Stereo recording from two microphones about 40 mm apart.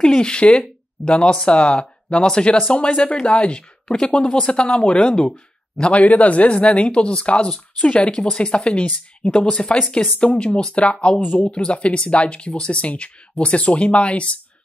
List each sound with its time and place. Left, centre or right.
0.0 s speech: left